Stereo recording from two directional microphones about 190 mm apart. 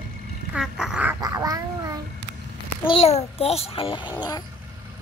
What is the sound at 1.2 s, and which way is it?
Cat, 20° right (ahead or behind).